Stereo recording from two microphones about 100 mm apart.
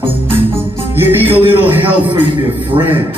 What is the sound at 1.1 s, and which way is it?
Speech, 20° right (ahead or behind).